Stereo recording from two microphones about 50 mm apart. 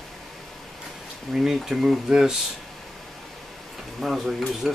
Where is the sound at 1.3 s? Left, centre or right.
Centre.